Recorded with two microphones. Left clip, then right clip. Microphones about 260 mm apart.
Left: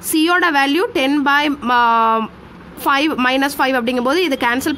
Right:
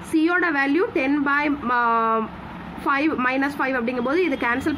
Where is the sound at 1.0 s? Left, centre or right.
Left.